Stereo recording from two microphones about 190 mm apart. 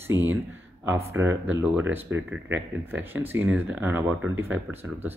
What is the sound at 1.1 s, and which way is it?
Speech, 10° right (ahead or behind).